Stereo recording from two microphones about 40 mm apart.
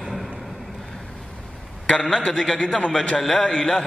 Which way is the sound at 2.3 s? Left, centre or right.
Centre.